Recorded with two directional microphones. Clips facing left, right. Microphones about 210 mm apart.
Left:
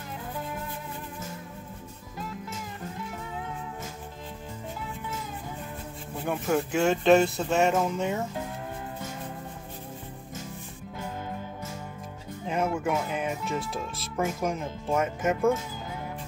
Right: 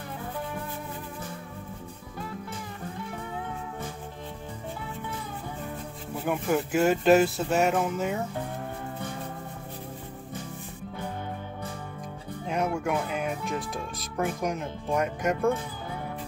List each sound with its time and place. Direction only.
6.2 s speech: centre (ahead or behind)
12.4 s music: centre (ahead or behind)
13.1 s speech: centre (ahead or behind)